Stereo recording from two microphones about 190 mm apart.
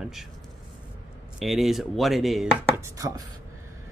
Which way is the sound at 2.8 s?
15° right (ahead or behind).